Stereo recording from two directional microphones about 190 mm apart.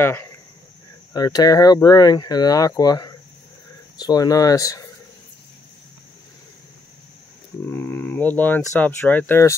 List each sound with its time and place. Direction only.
0.0 s speech: 15° left (ahead or behind)
7.6 s speech: 10° left (ahead or behind)